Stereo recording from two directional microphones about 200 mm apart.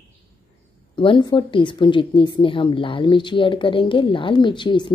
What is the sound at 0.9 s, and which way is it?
A woman's voice, 25° left (ahead or behind).